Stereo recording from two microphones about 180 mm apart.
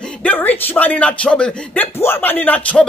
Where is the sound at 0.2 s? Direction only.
10° left (ahead or behind).